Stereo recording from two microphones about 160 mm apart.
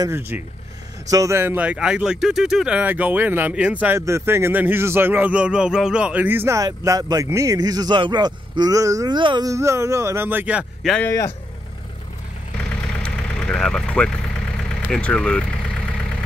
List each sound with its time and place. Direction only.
0.0 s speech: 15° right (ahead or behind)
11.1 s speech: 20° left (ahead or behind)
13.0 s engine: 5° left (ahead or behind)
14.9 s speech: 5° left (ahead or behind)